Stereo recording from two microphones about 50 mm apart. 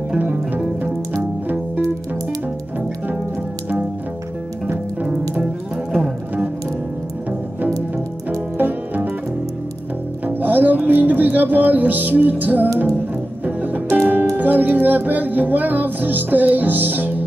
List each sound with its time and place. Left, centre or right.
0.2 s music: right
8.5 s music: right
10.2 s music: right
13.9 s music: right